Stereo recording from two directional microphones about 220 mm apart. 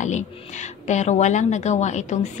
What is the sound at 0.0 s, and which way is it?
A woman's voice, 35° left (ahead or behind).